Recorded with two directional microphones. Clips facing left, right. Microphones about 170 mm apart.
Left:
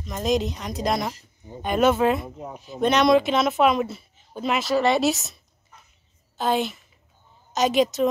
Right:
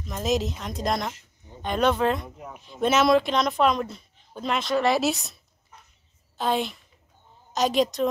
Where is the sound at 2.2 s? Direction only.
25° left (ahead or behind).